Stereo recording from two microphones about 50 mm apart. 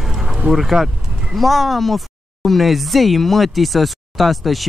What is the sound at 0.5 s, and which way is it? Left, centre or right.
Speech, centre.